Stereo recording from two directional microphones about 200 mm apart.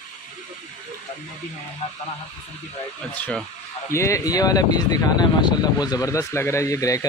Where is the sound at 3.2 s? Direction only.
5° left (ahead or behind).